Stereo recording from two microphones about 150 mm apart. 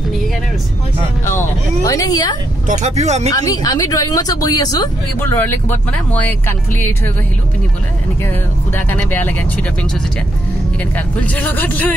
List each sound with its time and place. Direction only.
1.9 s speech: 25° left (ahead or behind)
2.7 s speech: 50° right (ahead or behind)
3.3 s speech: 25° left (ahead or behind)
5.2 s speech: 15° left (ahead or behind)
8.7 s speech: 10° left (ahead or behind)
11.1 s speech: 10° left (ahead or behind)